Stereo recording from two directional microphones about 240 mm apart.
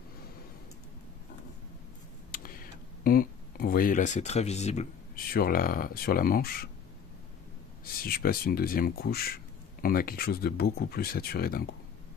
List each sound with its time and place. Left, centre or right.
2.3 s speech: left
7.8 s speech: left